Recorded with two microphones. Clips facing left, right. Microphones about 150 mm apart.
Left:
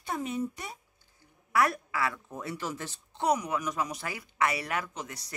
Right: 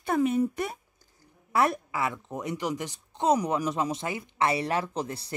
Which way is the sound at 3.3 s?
30° right (ahead or behind).